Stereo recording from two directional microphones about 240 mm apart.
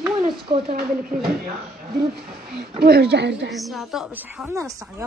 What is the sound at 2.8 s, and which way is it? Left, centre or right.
Speech, right.